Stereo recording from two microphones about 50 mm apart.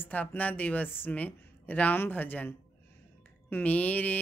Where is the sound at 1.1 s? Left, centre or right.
Left.